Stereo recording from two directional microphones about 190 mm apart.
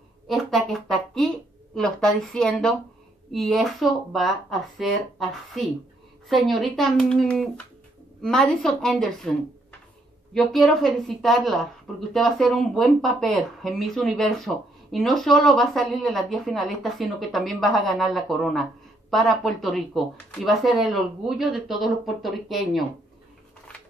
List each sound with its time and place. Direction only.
0.3 s speech: centre (ahead or behind)